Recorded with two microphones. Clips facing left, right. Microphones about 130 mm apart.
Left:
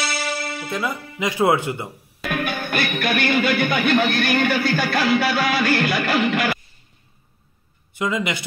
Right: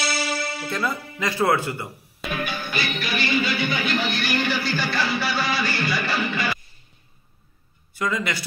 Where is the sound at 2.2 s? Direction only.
55° left (ahead or behind).